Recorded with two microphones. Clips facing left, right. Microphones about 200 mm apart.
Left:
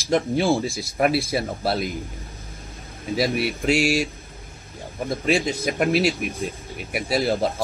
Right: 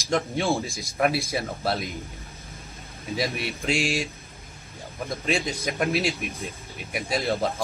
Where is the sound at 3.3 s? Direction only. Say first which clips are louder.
Left 6 dB; 10° left (ahead or behind).